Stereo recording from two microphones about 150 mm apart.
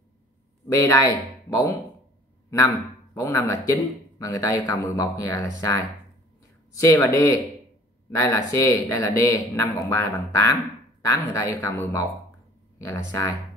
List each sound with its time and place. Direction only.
0.7 s a man's voice: 20° left (ahead or behind)
3.2 s a man's voice: 20° left (ahead or behind)